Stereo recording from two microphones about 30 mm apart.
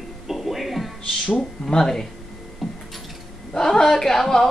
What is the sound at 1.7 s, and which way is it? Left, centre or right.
Speech, centre.